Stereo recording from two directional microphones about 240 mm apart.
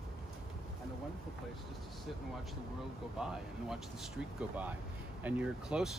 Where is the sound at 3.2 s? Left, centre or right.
Centre.